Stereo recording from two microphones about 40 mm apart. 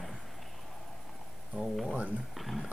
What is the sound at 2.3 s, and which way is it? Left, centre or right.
Speech, centre.